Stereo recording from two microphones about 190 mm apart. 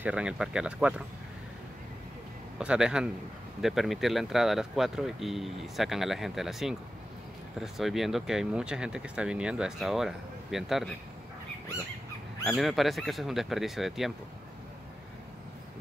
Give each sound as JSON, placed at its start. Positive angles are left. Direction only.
{"t": 0.0, "sound": "speech", "side_deg": -5}
{"t": 2.6, "sound": "speech", "side_deg": -5}
{"t": 12.4, "sound": "speech", "side_deg": 0}